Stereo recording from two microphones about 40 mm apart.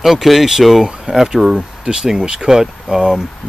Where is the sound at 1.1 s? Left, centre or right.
Centre.